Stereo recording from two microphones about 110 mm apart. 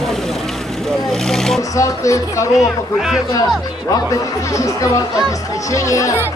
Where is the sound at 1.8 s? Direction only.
30° left (ahead or behind).